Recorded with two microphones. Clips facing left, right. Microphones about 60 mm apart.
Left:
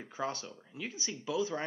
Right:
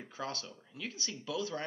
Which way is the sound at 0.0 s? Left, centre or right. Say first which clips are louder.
Left 3 dB; centre.